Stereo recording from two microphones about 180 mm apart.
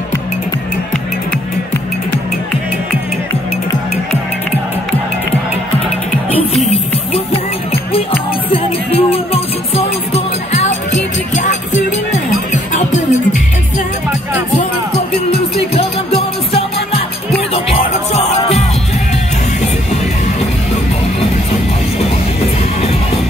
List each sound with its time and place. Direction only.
8.5 s music: 30° left (ahead or behind)
15.3 s music: 35° left (ahead or behind)